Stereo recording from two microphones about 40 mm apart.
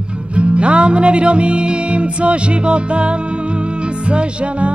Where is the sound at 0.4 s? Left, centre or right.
Right.